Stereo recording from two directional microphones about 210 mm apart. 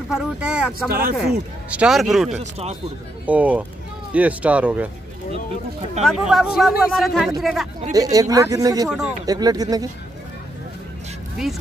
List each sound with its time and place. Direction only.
0.1 s speech: 5° right (ahead or behind)
0.8 s speech: 45° right (ahead or behind)
1.1 s speech: 5° right (ahead or behind)
2.3 s speech: 30° right (ahead or behind)
3.3 s speech: 5° right (ahead or behind)
6.0 s speech: centre (ahead or behind)
7.9 s speech: 15° right (ahead or behind)
8.8 s speech: 5° right (ahead or behind)
9.2 s speech: 20° right (ahead or behind)
11.4 s speech: centre (ahead or behind)